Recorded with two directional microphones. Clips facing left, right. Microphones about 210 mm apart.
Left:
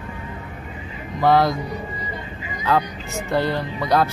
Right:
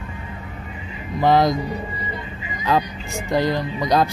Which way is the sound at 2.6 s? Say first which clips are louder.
Even; 15° right (ahead or behind).